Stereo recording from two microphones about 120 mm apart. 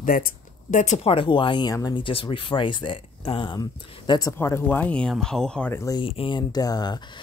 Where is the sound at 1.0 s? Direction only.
45° left (ahead or behind).